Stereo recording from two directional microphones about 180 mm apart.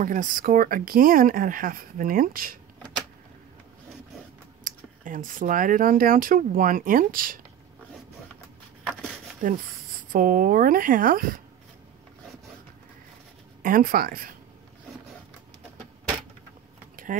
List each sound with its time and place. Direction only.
0.0 s speech: 50° right (ahead or behind)
4.6 s speech: 50° right (ahead or behind)
9.4 s speech: 50° right (ahead or behind)
13.6 s speech: 50° right (ahead or behind)
16.9 s keys jangling: 45° right (ahead or behind)